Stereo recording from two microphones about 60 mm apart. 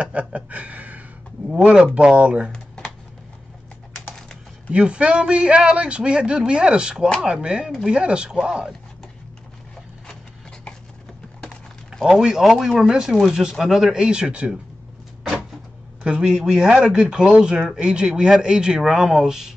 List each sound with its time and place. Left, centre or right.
0.0 s a sound: centre
1.5 s speech: centre
2.5 s computer keyboard: centre
4.6 s speech: centre
11.9 s a sound: centre
12.2 s speech: centre
13.9 s speech: centre
16.0 s speech: centre